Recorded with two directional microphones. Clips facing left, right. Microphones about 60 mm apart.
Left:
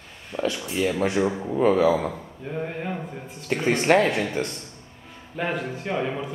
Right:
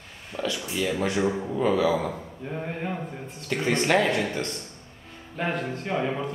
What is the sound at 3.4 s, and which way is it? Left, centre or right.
Speech, left.